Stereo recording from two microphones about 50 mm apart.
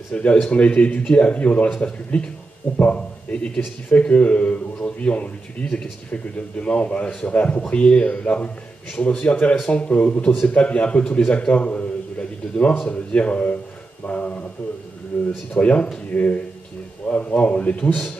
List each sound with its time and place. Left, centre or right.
0.1 s a man's voice: left
15.1 s speech: left
15.5 s a man's voice: left